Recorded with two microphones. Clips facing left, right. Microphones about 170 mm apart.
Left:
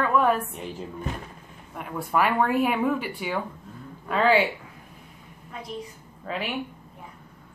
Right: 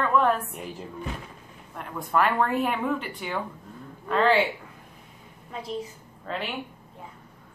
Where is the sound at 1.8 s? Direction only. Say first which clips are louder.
Even; 5° left (ahead or behind).